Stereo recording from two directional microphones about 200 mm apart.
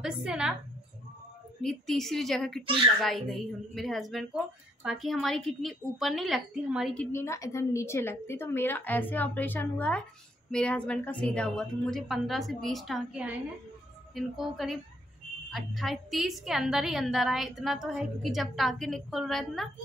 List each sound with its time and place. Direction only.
0.0 s a woman's voice: 5° right (ahead or behind)
1.6 s a woman's voice: centre (ahead or behind)
2.6 s a child's voice: 25° right (ahead or behind)
3.0 s a woman's voice: centre (ahead or behind)